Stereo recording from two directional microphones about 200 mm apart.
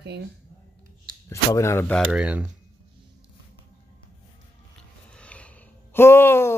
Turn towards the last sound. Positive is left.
turn(degrees=10)  # may be behind; listen again after turning